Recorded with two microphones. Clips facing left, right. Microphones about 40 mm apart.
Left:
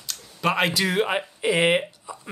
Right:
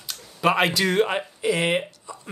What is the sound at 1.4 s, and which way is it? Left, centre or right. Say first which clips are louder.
Speech: left 3 dB; left.